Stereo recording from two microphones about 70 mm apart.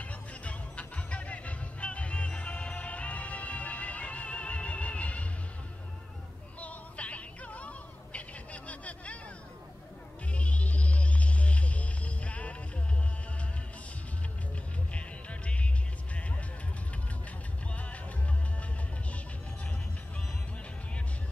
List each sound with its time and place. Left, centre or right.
0.0 s music: centre
6.6 s music: centre
10.3 s music: centre
14.9 s music: centre